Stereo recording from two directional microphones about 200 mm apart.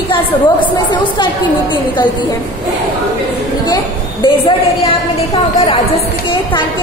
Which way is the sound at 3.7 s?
25° left (ahead or behind).